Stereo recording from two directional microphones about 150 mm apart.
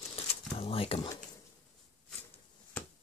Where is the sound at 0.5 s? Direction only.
40° left (ahead or behind).